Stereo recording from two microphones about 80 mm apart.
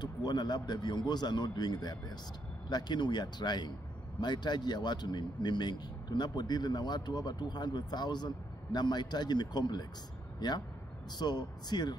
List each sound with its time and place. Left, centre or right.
0.0 s a man's voice: left